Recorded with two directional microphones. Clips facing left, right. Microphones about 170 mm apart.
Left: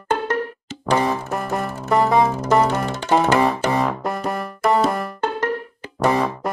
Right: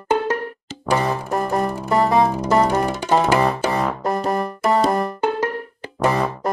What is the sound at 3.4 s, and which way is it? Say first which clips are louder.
Music: left 1 dB; centre (ahead or behind).